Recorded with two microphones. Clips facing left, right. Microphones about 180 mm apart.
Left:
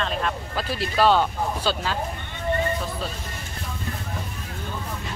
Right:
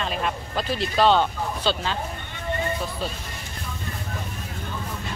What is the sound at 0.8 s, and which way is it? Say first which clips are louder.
Speech: even; 5° left (ahead or behind).